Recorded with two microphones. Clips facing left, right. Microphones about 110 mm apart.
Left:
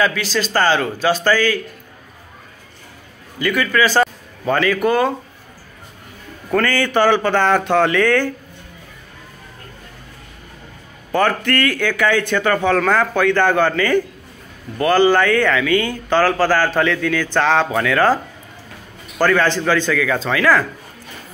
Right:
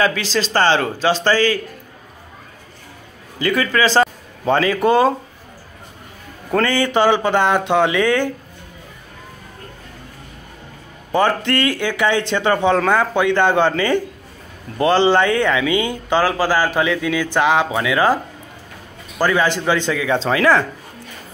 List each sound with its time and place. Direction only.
0.0 s speech: 30° right (ahead or behind)
3.3 s a man's voice: 30° right (ahead or behind)
6.5 s speech: 20° right (ahead or behind)
11.1 s speech: 20° right (ahead or behind)